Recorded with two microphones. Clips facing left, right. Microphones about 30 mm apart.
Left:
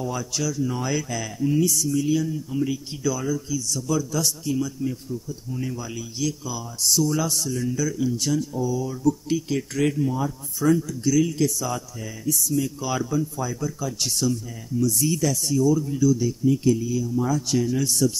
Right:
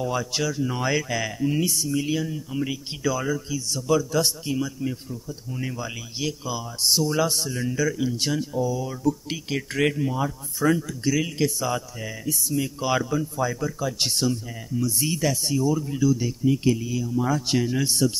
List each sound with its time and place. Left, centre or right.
0.0 s speech: right
13.0 s speech: centre
13.4 s a man's voice: right